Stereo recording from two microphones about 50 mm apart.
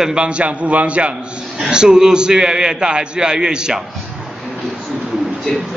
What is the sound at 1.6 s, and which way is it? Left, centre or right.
A man's voice, centre.